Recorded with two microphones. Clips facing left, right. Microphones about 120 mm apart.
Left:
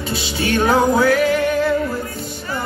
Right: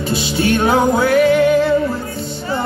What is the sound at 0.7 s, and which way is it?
Music, 25° right (ahead or behind).